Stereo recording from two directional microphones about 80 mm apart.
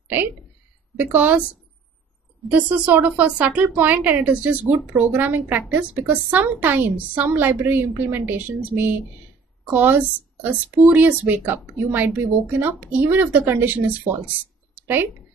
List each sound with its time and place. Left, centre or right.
0.9 s a woman's voice: right
2.5 s a woman's voice: centre